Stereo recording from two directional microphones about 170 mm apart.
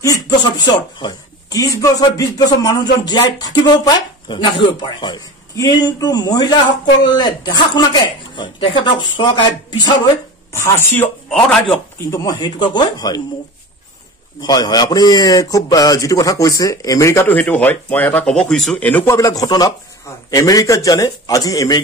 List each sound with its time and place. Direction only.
0.0 s a man's voice: 20° left (ahead or behind)
12.1 s a man's voice: 20° left (ahead or behind)
14.4 s a man's voice: 20° left (ahead or behind)